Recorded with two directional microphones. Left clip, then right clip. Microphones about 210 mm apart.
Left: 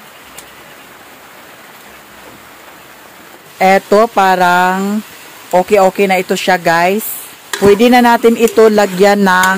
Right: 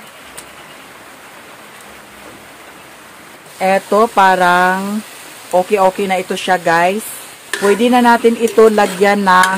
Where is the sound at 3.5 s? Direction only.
35° left (ahead or behind).